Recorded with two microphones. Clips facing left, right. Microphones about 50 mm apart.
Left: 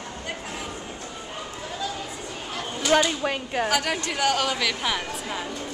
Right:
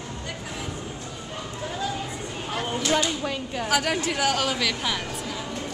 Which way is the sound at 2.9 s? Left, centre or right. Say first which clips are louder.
Left 5 dB; left.